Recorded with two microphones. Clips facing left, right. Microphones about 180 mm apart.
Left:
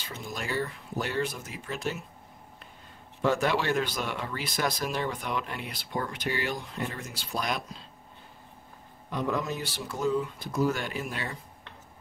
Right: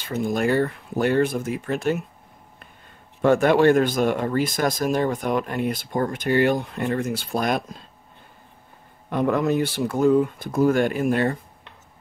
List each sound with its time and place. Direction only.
0.0 s speech: 55° right (ahead or behind)
3.2 s speech: 55° right (ahead or behind)
9.1 s speech: 60° right (ahead or behind)